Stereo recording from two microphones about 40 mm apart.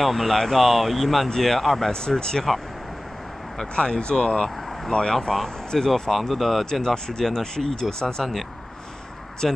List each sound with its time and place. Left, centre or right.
0.0 s speech: centre
1.9 s speech: centre
3.7 s speech: left
5.3 s speech: centre
6.6 s speech: centre
8.0 s speech: centre
9.4 s speech: centre